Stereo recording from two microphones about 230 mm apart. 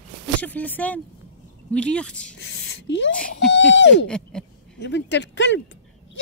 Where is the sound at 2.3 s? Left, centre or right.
Left.